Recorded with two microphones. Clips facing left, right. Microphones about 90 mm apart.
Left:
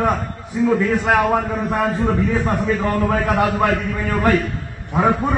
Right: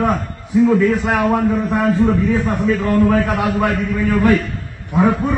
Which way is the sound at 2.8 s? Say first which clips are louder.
Right 4 dB; 15° left (ahead or behind).